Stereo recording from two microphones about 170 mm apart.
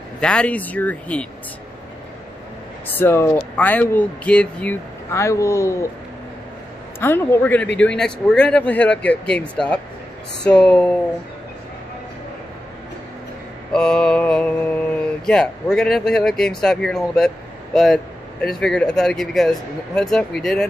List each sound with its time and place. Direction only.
0.2 s speech: 5° left (ahead or behind)
2.9 s speech: 15° left (ahead or behind)
7.0 s speech: 15° left (ahead or behind)
13.7 s speech: 5° left (ahead or behind)